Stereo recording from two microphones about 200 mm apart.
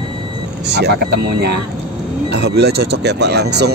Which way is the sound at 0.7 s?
55° right (ahead or behind).